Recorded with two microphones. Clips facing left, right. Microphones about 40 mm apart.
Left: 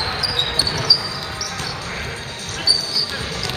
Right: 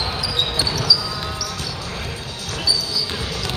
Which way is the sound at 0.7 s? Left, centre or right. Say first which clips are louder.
Right 1 dB; left.